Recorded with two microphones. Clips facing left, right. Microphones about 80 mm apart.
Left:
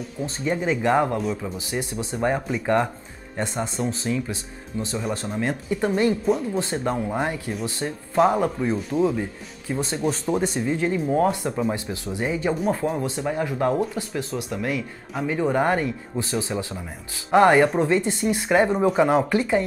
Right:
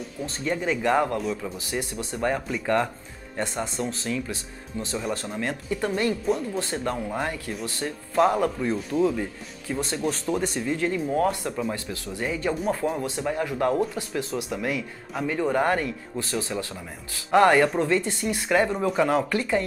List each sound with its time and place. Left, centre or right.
0.2 s speech: centre
2.6 s speech: centre
12.5 s speech: centre